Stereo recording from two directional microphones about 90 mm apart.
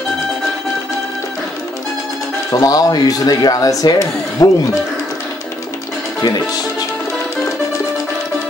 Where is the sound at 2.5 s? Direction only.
40° left (ahead or behind).